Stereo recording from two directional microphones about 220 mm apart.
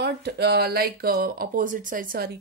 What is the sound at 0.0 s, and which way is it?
A woman's voice, 50° right (ahead or behind).